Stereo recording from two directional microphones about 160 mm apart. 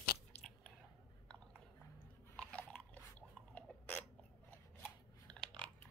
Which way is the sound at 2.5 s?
10° left (ahead or behind).